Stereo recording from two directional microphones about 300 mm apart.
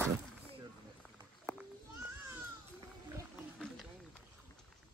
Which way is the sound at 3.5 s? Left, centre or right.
Centre.